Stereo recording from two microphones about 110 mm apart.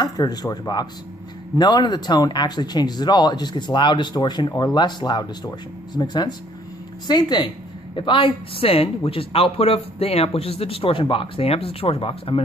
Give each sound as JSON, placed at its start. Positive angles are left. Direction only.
{"t": 0.0, "sound": "a woman's voice", "side_deg": 40}